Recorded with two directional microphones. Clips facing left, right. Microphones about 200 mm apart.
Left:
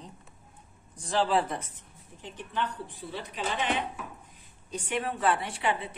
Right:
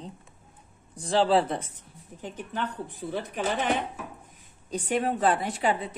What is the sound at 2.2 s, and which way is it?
Speech, 45° right (ahead or behind).